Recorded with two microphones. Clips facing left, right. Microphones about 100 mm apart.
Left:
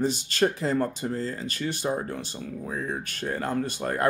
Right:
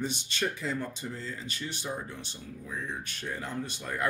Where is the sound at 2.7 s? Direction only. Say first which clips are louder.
Left 4 dB; 45° left (ahead or behind).